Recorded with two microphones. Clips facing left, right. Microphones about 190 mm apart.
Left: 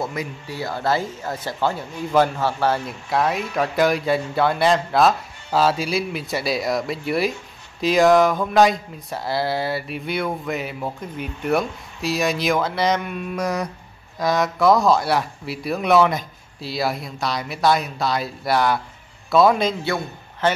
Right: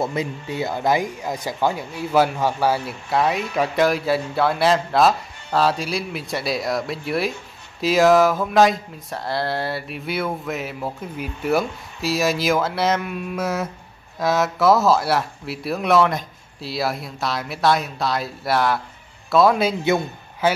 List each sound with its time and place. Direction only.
0.0 s speech: 25° right (ahead or behind); by 19.7 s centre (ahead or behind)
19.8 s a man's voice: 20° right (ahead or behind)